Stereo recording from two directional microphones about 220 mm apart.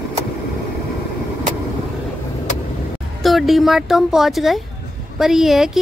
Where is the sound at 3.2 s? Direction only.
Centre (ahead or behind).